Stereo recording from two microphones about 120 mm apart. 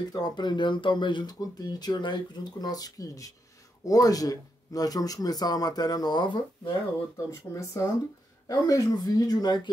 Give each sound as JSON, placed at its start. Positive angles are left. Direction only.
{"t": 0.1, "sound": "speech", "side_deg": 35}
{"t": 7.2, "sound": "speech", "side_deg": 25}